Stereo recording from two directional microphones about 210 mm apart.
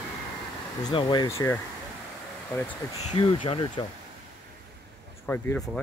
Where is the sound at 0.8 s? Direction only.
20° left (ahead or behind).